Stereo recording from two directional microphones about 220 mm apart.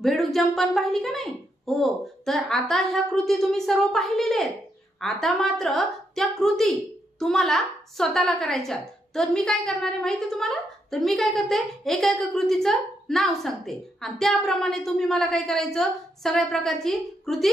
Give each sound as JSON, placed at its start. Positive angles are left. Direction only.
{"t": 0.0, "sound": "a woman's voice", "side_deg": 0}